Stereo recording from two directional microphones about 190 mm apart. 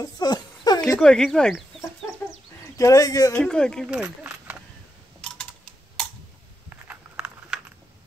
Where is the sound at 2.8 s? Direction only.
20° left (ahead or behind).